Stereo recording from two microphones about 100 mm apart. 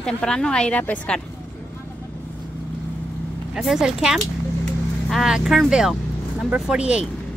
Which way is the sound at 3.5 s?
5° right (ahead or behind).